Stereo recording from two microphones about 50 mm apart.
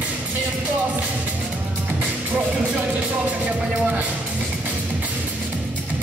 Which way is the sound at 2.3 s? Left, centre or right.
Right.